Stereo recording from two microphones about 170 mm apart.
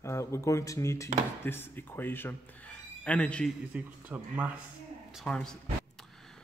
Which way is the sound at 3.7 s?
10° right (ahead or behind).